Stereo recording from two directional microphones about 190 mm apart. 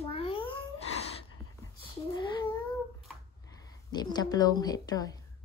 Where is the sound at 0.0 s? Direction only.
30° left (ahead or behind).